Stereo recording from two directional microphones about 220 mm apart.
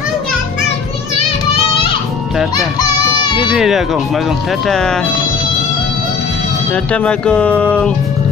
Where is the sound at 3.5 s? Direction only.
Centre (ahead or behind).